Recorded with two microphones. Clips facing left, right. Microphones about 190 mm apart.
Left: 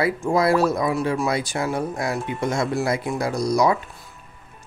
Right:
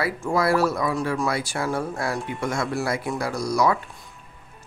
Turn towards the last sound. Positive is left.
turn(degrees=20)  # may be behind; listen again after turning